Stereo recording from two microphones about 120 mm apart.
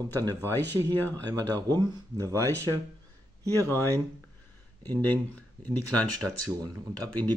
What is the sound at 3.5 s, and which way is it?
Speech, 20° left (ahead or behind).